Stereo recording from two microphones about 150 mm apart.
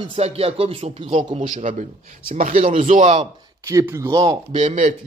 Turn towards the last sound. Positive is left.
turn(degrees=-35)  # may be behind; listen again after turning